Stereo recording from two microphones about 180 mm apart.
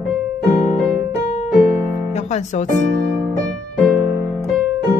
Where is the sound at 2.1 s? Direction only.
40° left (ahead or behind).